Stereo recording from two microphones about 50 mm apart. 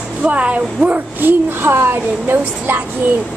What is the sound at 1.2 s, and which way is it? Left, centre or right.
A woman's voice, right.